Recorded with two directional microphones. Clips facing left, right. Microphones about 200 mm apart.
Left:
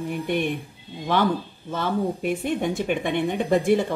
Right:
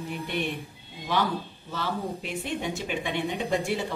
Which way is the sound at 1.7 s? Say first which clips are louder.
Left 7 dB; 50° left (ahead or behind).